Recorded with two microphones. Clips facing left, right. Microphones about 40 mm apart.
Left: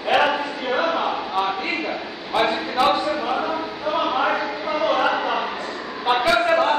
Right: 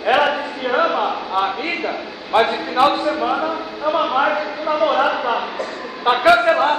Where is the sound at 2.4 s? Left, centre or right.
Centre.